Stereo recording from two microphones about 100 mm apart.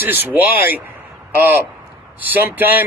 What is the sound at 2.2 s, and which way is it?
Speech, 20° right (ahead or behind).